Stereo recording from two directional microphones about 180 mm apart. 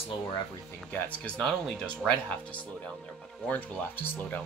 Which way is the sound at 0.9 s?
5° left (ahead or behind).